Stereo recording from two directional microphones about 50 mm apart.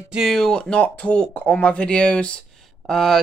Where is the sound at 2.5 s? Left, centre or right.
Centre.